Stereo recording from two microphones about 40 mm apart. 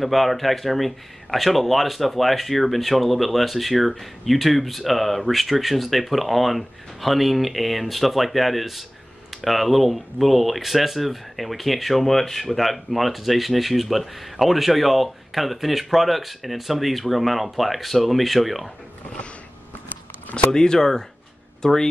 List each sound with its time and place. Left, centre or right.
0.0 s speech: centre
20.3 s speech: centre